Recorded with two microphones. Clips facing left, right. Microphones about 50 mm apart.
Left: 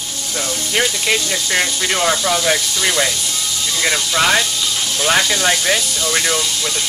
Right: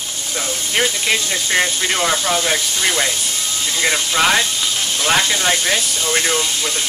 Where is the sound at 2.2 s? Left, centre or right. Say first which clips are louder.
Left 2 dB; centre.